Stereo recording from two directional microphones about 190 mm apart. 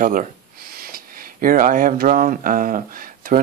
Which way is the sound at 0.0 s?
45° right (ahead or behind).